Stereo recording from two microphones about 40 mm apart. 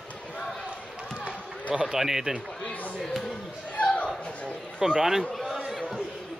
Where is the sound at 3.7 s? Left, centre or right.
Left.